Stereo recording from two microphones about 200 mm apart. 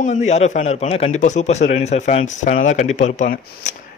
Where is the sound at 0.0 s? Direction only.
35° left (ahead or behind).